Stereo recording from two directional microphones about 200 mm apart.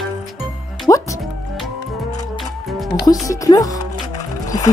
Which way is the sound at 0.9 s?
20° left (ahead or behind).